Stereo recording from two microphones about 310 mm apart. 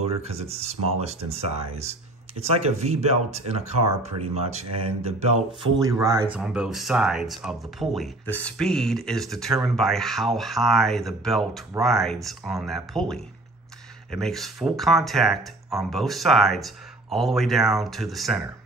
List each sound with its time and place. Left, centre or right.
0.2 s speech: centre